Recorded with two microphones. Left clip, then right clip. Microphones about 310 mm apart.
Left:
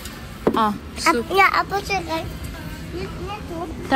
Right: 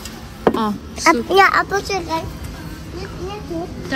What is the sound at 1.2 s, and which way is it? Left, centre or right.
Speech, right.